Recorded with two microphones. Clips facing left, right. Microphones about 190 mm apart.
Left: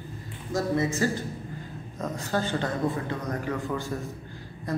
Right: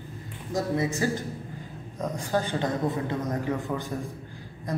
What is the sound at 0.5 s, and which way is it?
A man's voice, 15° right (ahead or behind).